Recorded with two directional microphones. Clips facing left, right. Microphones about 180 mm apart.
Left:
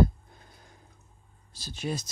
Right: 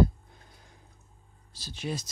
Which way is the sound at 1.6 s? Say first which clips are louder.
Left 2 dB; 45° left (ahead or behind).